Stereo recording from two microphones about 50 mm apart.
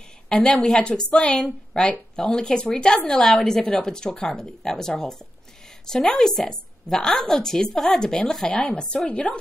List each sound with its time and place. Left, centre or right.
0.7 s a woman's voice: centre